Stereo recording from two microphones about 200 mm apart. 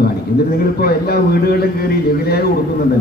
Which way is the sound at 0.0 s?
50° left (ahead or behind).